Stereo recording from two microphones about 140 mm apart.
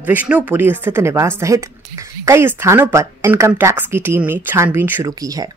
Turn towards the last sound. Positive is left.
turn(degrees=-25)  # may be behind; listen again after turning